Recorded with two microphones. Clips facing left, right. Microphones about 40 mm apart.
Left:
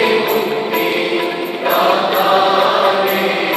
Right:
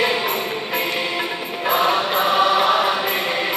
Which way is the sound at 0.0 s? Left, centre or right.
Left.